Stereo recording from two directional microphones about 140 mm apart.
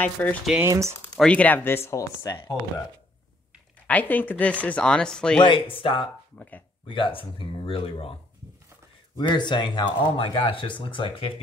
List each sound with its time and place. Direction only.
0.0 s speech: 10° left (ahead or behind)
0.6 s speech: 20° right (ahead or behind)
1.1 s speech: 5° left (ahead or behind)
3.8 s speech: 10° left (ahead or behind)
5.4 s speech: 40° left (ahead or behind)
6.3 s speech: 10° left (ahead or behind)
6.9 s speech: 40° left (ahead or behind)